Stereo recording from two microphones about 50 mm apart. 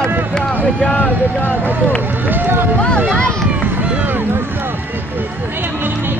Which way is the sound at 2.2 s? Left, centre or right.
Right.